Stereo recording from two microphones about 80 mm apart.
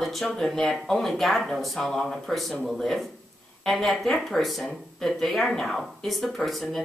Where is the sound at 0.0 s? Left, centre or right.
Centre.